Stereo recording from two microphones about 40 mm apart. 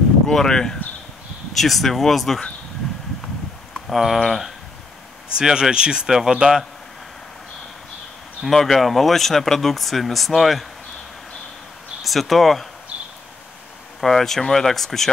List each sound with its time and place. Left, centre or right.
0.3 s speech: centre
1.5 s speech: centre
3.9 s speech: centre
5.4 s speech: right
8.5 s speech: centre
12.0 s speech: centre
14.0 s speech: centre